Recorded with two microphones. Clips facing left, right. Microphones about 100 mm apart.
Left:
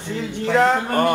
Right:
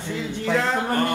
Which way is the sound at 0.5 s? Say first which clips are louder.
Left 6 dB; 55° left (ahead or behind).